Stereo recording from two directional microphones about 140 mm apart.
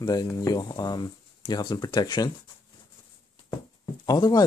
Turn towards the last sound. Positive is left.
turn(degrees=25)  # may be behind; listen again after turning